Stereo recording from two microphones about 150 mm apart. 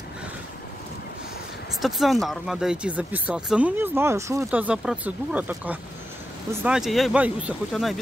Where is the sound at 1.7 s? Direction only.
Centre (ahead or behind); by 4.5 s 20° right (ahead or behind).